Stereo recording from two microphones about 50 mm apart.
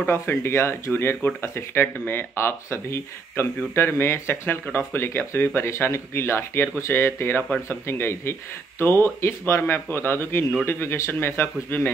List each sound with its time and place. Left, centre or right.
0.1 s speech: left